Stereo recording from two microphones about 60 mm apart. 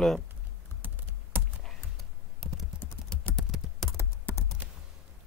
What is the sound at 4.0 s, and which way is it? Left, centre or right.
Computer keyboard, left.